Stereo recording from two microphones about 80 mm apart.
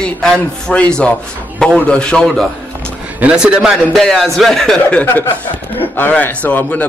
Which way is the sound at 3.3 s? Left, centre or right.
Centre.